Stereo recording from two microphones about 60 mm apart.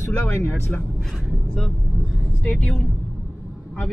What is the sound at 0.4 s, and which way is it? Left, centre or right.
Speech, left.